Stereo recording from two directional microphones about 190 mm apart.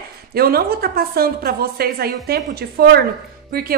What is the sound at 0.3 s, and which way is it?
A woman's voice, 55° right (ahead or behind).